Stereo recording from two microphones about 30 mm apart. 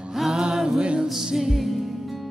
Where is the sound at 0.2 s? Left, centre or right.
Centre.